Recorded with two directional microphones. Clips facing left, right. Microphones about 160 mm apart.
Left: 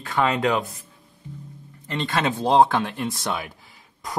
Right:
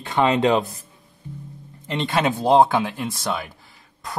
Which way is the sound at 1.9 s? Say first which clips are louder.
Right 3 dB; 15° right (ahead or behind).